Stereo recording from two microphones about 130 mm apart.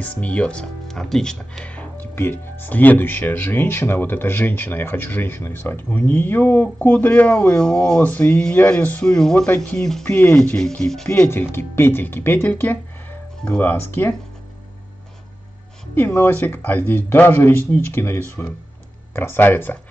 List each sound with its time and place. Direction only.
0.0 s speech: 10° left (ahead or behind)
11.2 s speech: 20° left (ahead or behind)
15.9 s speech: 15° left (ahead or behind)